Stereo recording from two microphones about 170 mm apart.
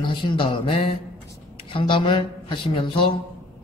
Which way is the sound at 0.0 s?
30° left (ahead or behind).